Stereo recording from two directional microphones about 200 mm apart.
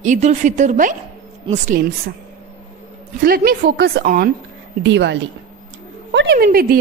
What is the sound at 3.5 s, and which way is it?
Speech, 50° right (ahead or behind).